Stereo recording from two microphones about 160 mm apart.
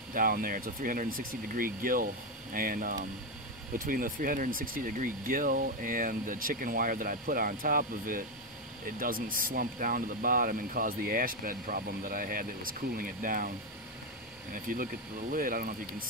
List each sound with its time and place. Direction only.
0.1 s speech: 60° right (ahead or behind)
14.5 s speech: 60° right (ahead or behind)